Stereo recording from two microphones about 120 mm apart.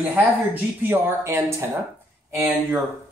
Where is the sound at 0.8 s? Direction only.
15° right (ahead or behind).